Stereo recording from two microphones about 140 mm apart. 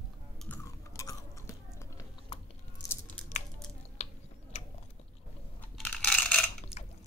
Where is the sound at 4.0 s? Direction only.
55° left (ahead or behind).